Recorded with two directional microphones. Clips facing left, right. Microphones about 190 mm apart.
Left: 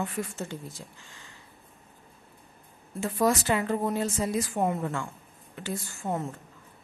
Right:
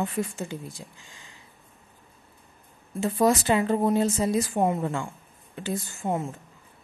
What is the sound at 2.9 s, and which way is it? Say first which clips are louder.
A woman's voice: right 3 dB; 20° right (ahead or behind).